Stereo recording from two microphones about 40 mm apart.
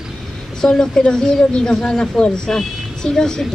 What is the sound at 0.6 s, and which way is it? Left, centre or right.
Speech, centre.